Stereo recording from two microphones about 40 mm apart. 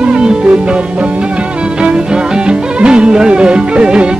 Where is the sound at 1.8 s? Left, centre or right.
Right.